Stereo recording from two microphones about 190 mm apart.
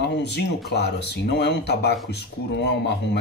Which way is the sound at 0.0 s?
65° left (ahead or behind).